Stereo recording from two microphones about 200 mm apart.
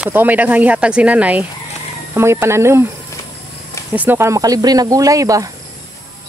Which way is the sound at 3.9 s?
10° right (ahead or behind).